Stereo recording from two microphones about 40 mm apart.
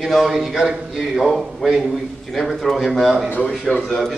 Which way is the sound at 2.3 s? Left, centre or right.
Centre.